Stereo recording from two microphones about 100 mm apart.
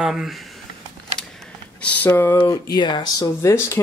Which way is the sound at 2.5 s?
45° left (ahead or behind).